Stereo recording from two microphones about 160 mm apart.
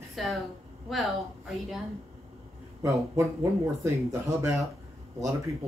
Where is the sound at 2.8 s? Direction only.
20° right (ahead or behind).